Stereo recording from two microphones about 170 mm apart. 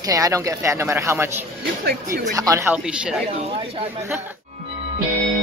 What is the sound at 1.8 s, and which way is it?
Speech, 55° right (ahead or behind).